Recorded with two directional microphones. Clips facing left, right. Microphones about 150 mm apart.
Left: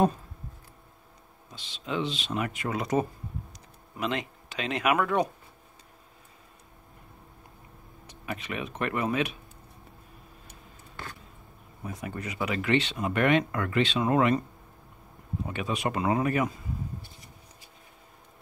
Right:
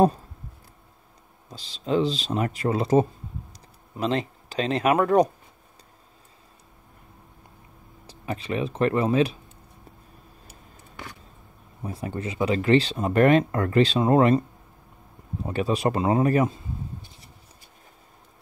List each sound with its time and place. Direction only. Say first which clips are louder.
1.5 s speech: right 8 dB; 35° right (ahead or behind)
8.1 s speech: right 6 dB; 30° right (ahead or behind)
11.0 s a sound: right 1 dB; 15° right (ahead or behind)
11.8 s speech: right 5 dB; 30° right (ahead or behind)
15.4 s speech: right 7 dB; 35° right (ahead or behind)